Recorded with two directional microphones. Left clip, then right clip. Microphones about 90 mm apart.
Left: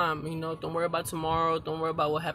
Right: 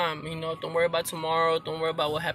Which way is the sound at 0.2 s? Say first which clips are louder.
Right 2 dB; 30° left (ahead or behind).